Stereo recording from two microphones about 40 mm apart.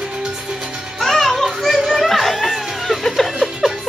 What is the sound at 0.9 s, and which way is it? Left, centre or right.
Music, centre.